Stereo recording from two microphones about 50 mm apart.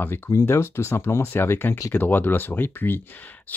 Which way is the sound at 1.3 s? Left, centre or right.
Left.